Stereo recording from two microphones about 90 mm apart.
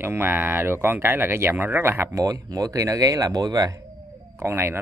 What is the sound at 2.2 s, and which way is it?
Speech, 40° right (ahead or behind).